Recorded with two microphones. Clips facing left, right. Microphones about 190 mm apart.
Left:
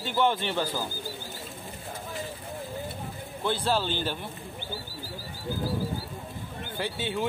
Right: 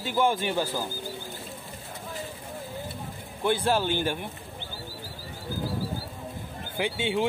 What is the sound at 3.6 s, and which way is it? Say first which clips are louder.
Speech: right 2 dB; 15° right (ahead or behind).